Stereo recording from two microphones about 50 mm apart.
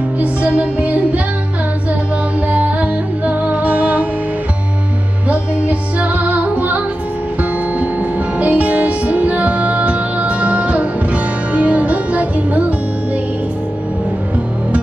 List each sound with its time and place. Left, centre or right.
0.2 s music: right
2.5 s music: right
5.3 s music: right
7.8 s music: right